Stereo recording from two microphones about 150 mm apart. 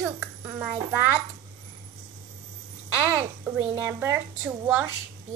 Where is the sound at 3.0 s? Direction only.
10° right (ahead or behind).